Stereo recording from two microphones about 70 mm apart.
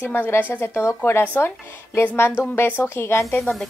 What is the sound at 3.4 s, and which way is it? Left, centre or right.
Speech, centre.